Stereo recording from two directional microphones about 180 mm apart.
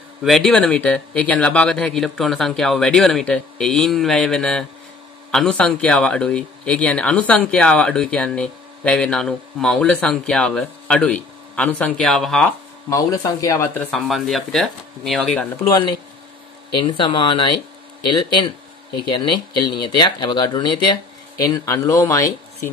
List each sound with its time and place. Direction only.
0.2 s speech: centre (ahead or behind)
12.9 s speech: 20° left (ahead or behind)
13.8 s speech: centre (ahead or behind)
16.7 s speech: 25° left (ahead or behind)